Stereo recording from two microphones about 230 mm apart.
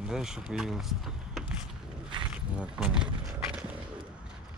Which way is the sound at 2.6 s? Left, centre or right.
Centre.